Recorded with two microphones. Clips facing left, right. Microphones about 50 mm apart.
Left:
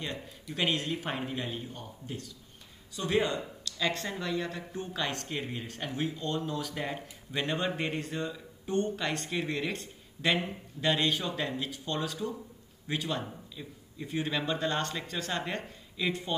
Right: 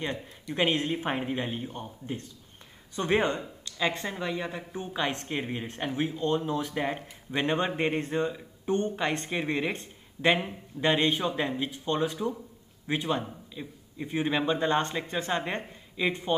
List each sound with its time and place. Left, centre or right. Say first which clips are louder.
0.6 s speech: right 4 dB; right
3.6 s speech: right 3 dB; right